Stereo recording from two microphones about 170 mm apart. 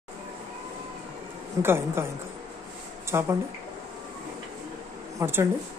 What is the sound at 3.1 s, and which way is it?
Speech, 15° right (ahead or behind).